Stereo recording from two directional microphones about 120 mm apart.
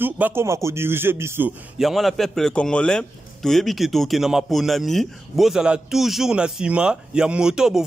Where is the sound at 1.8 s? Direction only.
Centre (ahead or behind).